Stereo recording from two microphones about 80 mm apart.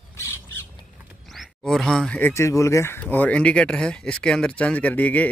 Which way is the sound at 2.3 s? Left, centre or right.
Left.